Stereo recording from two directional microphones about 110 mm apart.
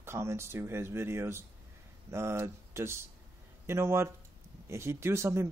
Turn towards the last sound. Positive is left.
turn(degrees=-25)  # may be behind; listen again after turning